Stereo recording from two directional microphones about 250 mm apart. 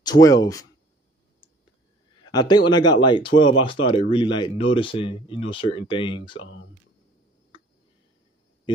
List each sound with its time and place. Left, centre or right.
0.0 s speech: centre
2.2 s speech: centre